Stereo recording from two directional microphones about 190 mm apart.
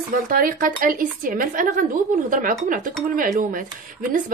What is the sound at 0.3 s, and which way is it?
A woman's voice, 45° right (ahead or behind).